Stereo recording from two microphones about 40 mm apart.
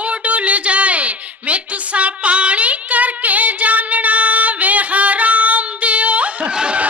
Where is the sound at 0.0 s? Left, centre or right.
Right.